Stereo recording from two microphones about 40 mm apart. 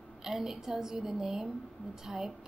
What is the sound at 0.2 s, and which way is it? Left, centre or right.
A woman's voice, centre.